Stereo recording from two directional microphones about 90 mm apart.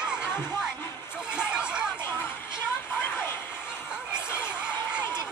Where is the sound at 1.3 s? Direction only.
10° right (ahead or behind).